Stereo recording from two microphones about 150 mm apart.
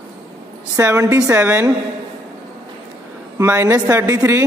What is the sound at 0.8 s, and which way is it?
Speech, 20° right (ahead or behind).